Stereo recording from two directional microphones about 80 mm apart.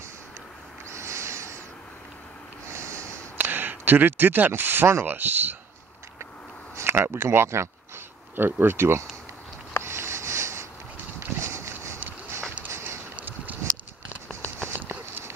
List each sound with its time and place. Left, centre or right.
0.9 s owl: right
2.7 s snort: right
3.3 s speech: right
6.8 s speech: right
9.8 s sniff: right
11.1 s a sound: right
13.1 s a sound: right
14.4 s clip-clop: right